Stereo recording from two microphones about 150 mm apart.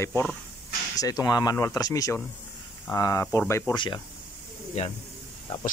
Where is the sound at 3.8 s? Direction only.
30° left (ahead or behind).